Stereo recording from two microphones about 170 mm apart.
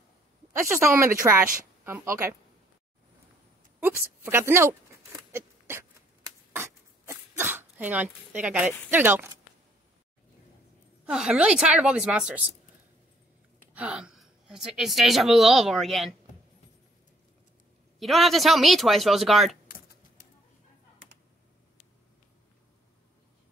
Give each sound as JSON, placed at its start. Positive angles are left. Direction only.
{"t": 0.8, "sound": "a woman's voice", "side_deg": -15}
{"t": 3.8, "sound": "a woman's voice", "side_deg": -15}
{"t": 5.3, "sound": "a sound", "side_deg": -15}
{"t": 8.9, "sound": "a woman's voice", "side_deg": -10}
{"t": 11.1, "sound": "a woman's voice", "side_deg": -5}
{"t": 13.7, "sound": "a woman's voice", "side_deg": -5}
{"t": 17.9, "sound": "a woman's voice", "side_deg": 0}